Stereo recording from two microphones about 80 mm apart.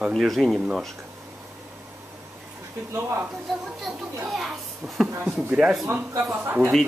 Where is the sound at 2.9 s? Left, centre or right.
Right.